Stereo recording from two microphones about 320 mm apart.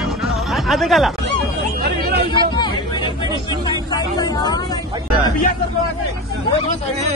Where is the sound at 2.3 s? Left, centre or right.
Centre.